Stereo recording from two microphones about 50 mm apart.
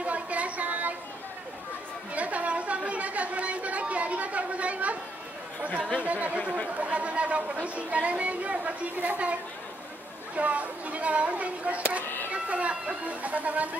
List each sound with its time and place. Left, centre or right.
0.0 s a sound: right
2.1 s chatter: right
6.0 s a woman's voice: right